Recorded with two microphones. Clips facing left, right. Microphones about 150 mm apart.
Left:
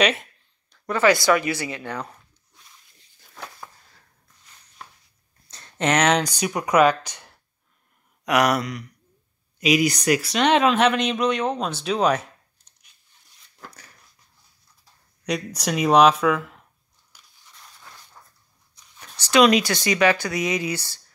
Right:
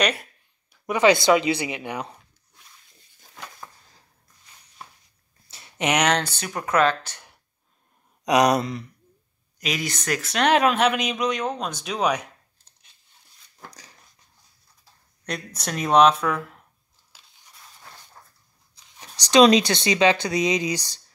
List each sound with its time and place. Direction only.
0.0 s a sound: centre (ahead or behind)
0.8 s speech: 15° right (ahead or behind)
5.8 s speech: 15° right (ahead or behind)
6.0 s speech: 10° left (ahead or behind)
8.3 s speech: 20° right (ahead or behind)
9.6 s speech: 10° left (ahead or behind)
10.2 s speech: centre (ahead or behind)
15.2 s speech: centre (ahead or behind)
18.9 s a sound: 15° right (ahead or behind)
19.4 s speech: 25° right (ahead or behind)